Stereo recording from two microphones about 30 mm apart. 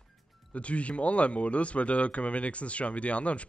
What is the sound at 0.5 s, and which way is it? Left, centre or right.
Speech, left.